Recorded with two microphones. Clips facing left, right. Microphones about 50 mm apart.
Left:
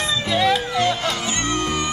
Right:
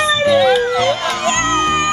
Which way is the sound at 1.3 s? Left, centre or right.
Right.